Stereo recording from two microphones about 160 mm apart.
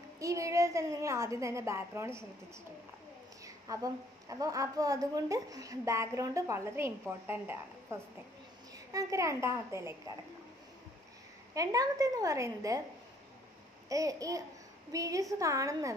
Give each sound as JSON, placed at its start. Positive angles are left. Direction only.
{"t": 0.2, "sound": "a woman's voice", "side_deg": -20}
{"t": 3.4, "sound": "a woman's voice", "side_deg": -20}
{"t": 11.5, "sound": "a woman's voice", "side_deg": -20}
{"t": 13.8, "sound": "a woman's voice", "side_deg": -20}